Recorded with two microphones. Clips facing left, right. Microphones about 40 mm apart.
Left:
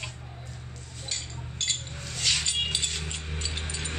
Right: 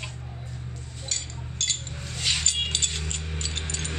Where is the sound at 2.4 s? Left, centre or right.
Centre.